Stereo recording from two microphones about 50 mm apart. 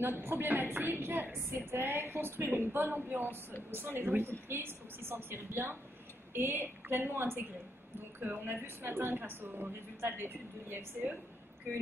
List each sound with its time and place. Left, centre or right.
0.0 s a woman's voice: right
1.5 s a woman's voice: right